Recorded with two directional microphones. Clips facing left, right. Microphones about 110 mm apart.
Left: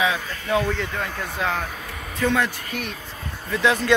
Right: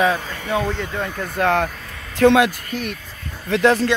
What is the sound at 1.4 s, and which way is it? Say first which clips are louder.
Speech: right 8 dB; 60° right (ahead or behind).